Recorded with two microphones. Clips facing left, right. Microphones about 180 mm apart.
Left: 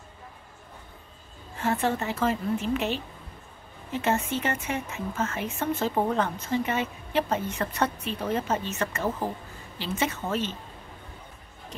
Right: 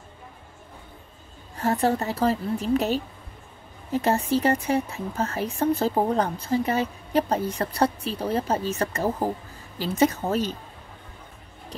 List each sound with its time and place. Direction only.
1.6 s speech: 40° right (ahead or behind)